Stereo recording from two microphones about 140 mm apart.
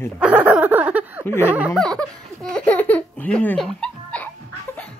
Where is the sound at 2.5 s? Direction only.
10° left (ahead or behind).